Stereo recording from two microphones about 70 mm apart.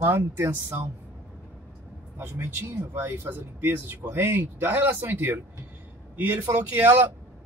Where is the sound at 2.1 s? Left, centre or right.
Right.